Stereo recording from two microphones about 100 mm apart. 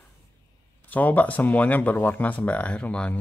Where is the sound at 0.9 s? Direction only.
15° left (ahead or behind).